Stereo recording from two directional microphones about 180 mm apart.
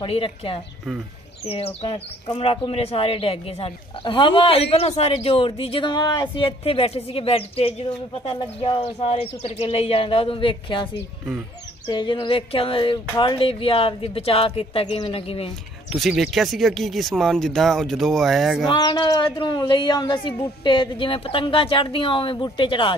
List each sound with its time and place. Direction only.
0.0 s speech: 30° left (ahead or behind)
11.9 s speech: 25° left (ahead or behind)
15.9 s speech: centre (ahead or behind)
18.7 s speech: 25° left (ahead or behind)